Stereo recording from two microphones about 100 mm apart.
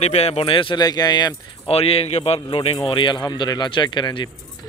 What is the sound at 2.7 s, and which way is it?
Speech, 55° left (ahead or behind).